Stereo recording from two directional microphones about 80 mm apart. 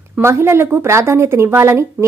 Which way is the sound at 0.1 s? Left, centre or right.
Right.